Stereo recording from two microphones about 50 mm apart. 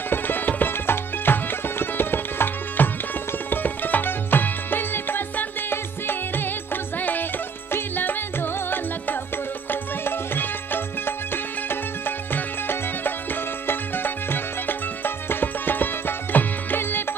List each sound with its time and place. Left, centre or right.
0.1 s music: left
12.3 s music: left